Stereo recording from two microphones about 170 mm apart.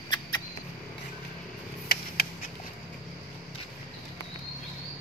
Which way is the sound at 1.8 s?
60° left (ahead or behind).